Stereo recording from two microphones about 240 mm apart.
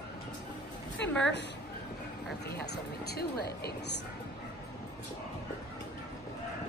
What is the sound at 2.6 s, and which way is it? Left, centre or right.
Speech, left.